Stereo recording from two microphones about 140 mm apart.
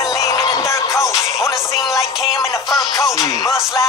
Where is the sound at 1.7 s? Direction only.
Centre (ahead or behind).